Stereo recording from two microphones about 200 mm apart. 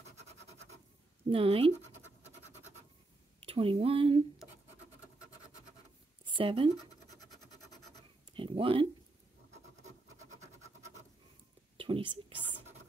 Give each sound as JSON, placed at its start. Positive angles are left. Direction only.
{"t": 0.0, "sound": "scratch", "side_deg": -35}
{"t": 1.3, "sound": "speech", "side_deg": -30}
{"t": 3.3, "sound": "speech", "side_deg": -25}
{"t": 6.2, "sound": "a sound", "side_deg": -25}
{"t": 8.3, "sound": "a sound", "side_deg": -25}
{"t": 11.7, "sound": "whispering", "side_deg": -25}